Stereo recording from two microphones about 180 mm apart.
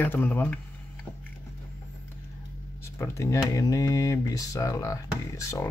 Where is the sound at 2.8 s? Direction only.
15° left (ahead or behind).